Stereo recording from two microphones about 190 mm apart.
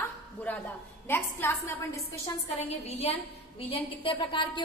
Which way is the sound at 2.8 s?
35° left (ahead or behind).